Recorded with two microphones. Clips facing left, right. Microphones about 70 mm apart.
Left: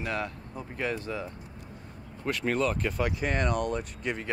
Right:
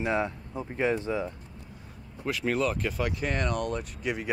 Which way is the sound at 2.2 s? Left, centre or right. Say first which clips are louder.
Even; centre.